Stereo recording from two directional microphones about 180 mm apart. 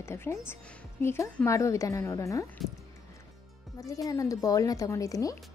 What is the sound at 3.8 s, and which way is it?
A woman's voice, 20° left (ahead or behind).